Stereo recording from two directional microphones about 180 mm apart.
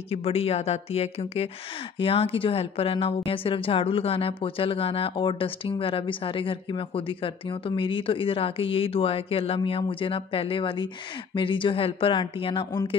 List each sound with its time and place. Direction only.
0.1 s speech: 35° left (ahead or behind)